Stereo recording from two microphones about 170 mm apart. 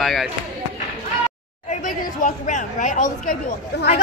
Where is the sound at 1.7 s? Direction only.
50° left (ahead or behind).